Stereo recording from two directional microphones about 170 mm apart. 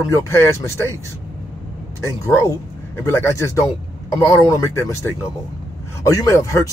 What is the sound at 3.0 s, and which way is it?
Speech, 15° left (ahead or behind).